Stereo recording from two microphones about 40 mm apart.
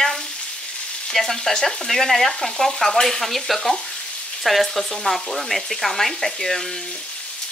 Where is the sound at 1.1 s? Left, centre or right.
Centre.